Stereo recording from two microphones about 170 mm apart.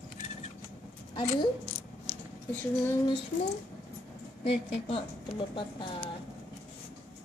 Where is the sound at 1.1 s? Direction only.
30° left (ahead or behind).